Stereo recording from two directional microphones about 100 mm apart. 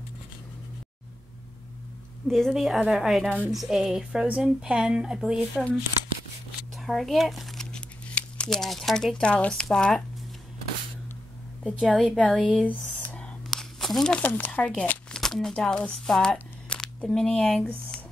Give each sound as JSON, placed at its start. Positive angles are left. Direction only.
{"t": 2.2, "sound": "a woman's voice", "side_deg": 0}
{"t": 6.8, "sound": "speech", "side_deg": 0}
{"t": 11.6, "sound": "a woman's voice", "side_deg": -5}
{"t": 12.6, "sound": "a sound", "side_deg": 15}
{"t": 14.2, "sound": "speech", "side_deg": 15}
{"t": 15.1, "sound": "speech", "side_deg": 5}